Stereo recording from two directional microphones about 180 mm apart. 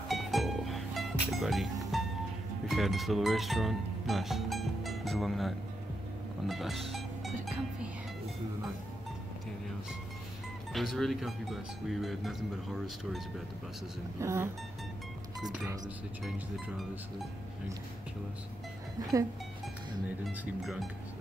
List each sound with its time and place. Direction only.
0.1 s music: centre (ahead or behind)
2.7 s speech: centre (ahead or behind)
6.4 s music: centre (ahead or behind)
10.7 s speech: centre (ahead or behind)
14.2 s speech: 15° right (ahead or behind)
16.3 s speech: centre (ahead or behind)
19.0 s speech: 20° right (ahead or behind)
20.6 s speech: centre (ahead or behind)